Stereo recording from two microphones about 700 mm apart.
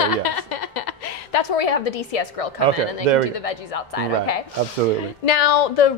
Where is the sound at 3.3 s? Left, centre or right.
Left.